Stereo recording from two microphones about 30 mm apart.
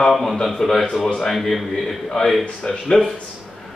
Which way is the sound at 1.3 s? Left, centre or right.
Centre.